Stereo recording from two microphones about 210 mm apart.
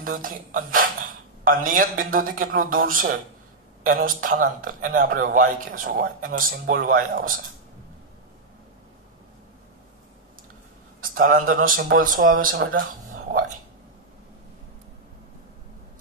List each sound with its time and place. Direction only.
0.0 s a man's voice: 45° right (ahead or behind)
11.0 s a man's voice: 40° right (ahead or behind)
13.1 s whispering: 40° right (ahead or behind)